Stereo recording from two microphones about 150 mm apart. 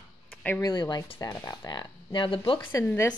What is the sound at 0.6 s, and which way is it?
Speech, 30° left (ahead or behind).